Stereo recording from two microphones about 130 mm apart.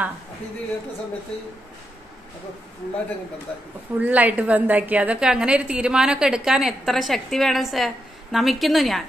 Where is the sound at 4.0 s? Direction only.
10° right (ahead or behind).